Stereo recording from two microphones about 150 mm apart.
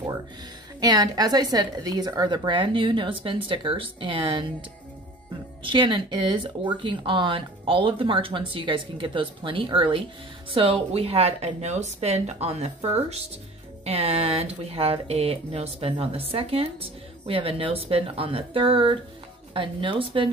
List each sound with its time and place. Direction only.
0.7 s speech: 25° right (ahead or behind)
5.6 s speech: 35° right (ahead or behind)